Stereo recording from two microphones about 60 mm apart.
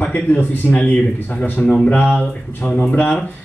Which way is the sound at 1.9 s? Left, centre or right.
Left.